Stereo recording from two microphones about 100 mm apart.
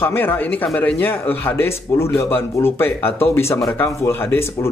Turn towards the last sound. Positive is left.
turn(degrees=25)  # may be behind; listen again after turning